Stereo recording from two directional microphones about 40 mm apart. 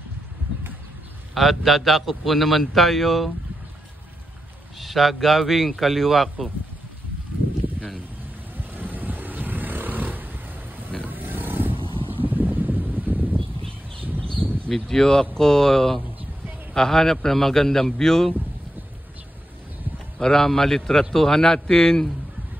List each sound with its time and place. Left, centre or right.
1.3 s a man's voice: centre
4.7 s a man's voice: centre
8.5 s vehicle: right
14.0 s a sound: right
14.7 s a man's voice: centre
20.2 s a man's voice: centre